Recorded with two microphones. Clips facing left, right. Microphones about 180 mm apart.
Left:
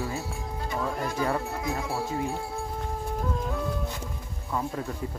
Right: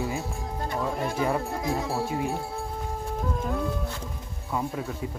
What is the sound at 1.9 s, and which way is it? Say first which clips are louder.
Speech: right 2 dB; 15° right (ahead or behind).